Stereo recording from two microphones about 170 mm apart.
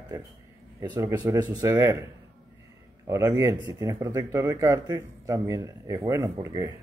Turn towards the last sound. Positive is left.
turn(degrees=-20)  # may be behind; listen again after turning